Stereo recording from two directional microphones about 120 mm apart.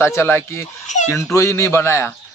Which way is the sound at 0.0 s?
20° left (ahead or behind).